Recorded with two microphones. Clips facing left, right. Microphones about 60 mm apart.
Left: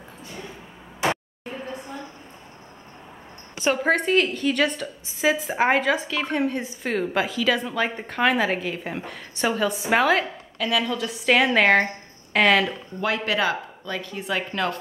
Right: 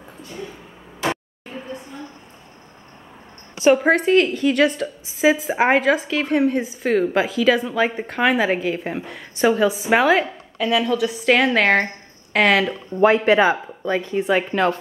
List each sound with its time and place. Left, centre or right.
3.6 s a woman's voice: centre
12.9 s speech: right